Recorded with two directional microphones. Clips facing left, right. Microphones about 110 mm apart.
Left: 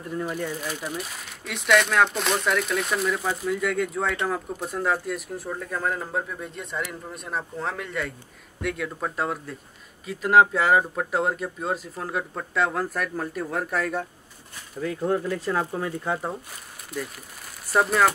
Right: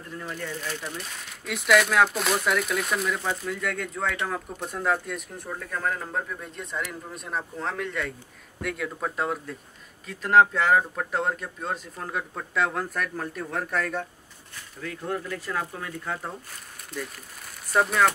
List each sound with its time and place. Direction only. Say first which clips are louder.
0.1 s speech: left 5 dB; 15° left (ahead or behind)
14.8 s speech: left 7 dB; 25° left (ahead or behind)
16.9 s speech: left 3 dB; 5° left (ahead or behind)